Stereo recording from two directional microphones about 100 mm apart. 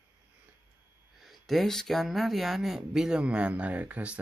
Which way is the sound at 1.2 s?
Centre (ahead or behind).